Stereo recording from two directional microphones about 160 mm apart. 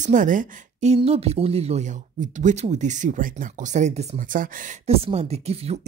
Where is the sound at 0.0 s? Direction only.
50° right (ahead or behind).